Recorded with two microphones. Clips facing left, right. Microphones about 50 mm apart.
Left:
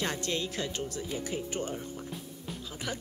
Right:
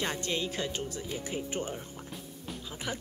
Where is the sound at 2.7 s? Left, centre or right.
Centre.